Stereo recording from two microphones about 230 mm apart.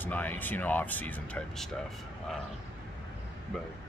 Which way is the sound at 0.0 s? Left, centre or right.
Centre.